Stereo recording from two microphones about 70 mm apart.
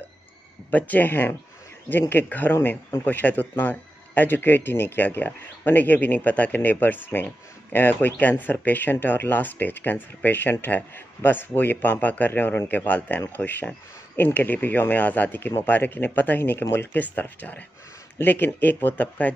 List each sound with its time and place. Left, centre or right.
0.7 s speech: left